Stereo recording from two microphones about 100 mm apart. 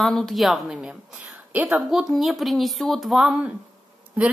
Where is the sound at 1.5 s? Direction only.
15° right (ahead or behind).